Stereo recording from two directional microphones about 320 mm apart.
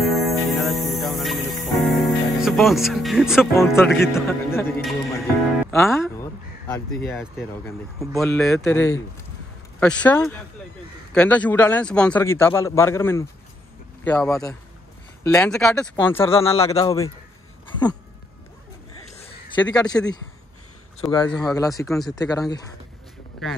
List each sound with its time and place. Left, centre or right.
0.0 s music: centre
3.5 s a man's voice: centre
16.3 s speech: centre
19.2 s a sound: centre
19.6 s speech: centre
22.2 s speech: centre